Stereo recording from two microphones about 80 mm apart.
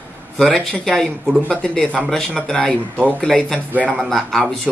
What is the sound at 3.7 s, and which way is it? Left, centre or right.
Speech, centre.